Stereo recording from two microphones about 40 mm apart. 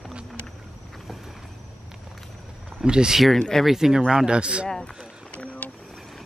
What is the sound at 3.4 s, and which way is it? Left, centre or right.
Speech, centre.